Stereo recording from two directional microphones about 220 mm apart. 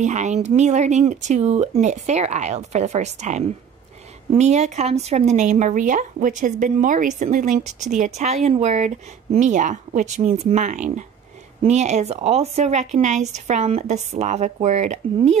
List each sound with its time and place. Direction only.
0.0 s speech: 30° right (ahead or behind)